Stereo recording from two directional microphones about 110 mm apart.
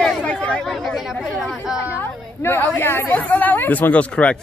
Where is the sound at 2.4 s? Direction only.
20° left (ahead or behind).